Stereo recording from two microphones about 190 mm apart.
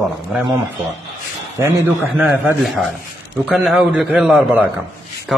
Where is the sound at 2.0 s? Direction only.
10° right (ahead or behind).